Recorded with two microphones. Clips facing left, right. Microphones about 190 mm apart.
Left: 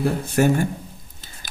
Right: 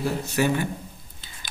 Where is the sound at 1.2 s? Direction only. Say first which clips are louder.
Left 1 dB; 45° left (ahead or behind).